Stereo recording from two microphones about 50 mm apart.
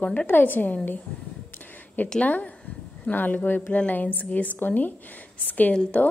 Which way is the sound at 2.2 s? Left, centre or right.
Left.